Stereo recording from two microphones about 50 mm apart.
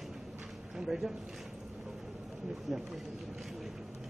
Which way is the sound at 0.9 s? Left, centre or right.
Centre.